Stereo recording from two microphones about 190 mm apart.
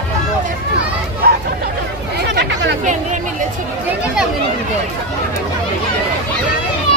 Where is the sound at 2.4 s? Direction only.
65° right (ahead or behind).